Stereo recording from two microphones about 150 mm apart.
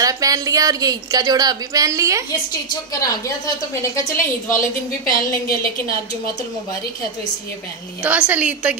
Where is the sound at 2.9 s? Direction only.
25° left (ahead or behind).